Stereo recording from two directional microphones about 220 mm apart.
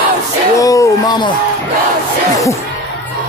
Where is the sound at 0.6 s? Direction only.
15° left (ahead or behind).